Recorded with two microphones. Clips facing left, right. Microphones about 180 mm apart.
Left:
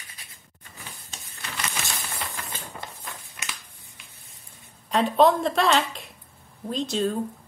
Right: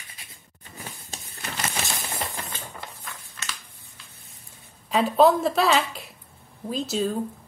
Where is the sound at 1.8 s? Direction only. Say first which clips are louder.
Right 3 dB; 25° right (ahead or behind).